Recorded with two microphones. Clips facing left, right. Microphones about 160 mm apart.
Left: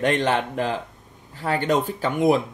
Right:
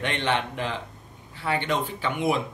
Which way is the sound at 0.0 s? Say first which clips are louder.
Left 5 dB; 40° left (ahead or behind).